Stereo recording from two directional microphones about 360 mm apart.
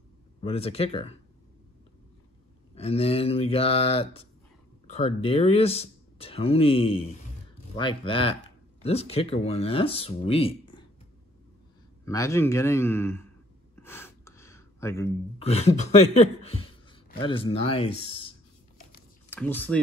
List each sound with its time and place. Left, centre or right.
0.4 s speech: centre
2.7 s speech: centre
12.0 s speech: centre
19.3 s speech: centre